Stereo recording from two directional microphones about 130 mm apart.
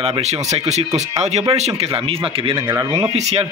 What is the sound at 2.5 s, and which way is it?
Speech, 30° right (ahead or behind).